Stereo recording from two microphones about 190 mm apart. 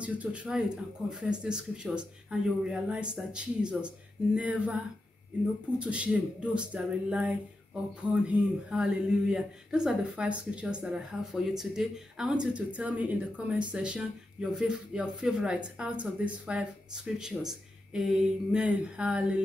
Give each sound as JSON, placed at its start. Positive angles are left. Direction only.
{"t": 0.0, "sound": "speech", "side_deg": -5}
{"t": 5.8, "sound": "speech", "side_deg": -5}